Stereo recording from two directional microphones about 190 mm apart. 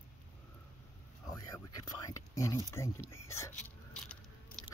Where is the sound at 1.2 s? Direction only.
20° left (ahead or behind).